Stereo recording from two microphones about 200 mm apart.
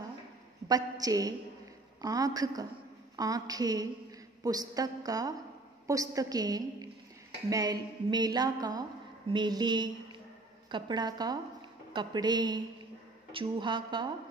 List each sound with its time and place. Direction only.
0.7 s a woman's voice: 20° right (ahead or behind)